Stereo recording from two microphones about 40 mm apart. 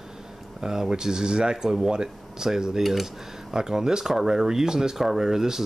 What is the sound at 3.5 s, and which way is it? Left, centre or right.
Speech, centre.